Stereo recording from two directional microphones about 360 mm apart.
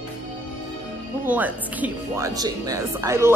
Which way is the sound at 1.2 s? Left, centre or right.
Centre.